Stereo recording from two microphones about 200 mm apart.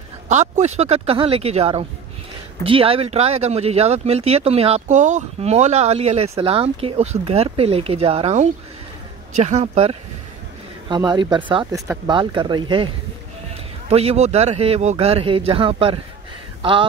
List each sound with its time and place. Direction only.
0.3 s speech: 35° right (ahead or behind)
10.9 s speech: 20° right (ahead or behind)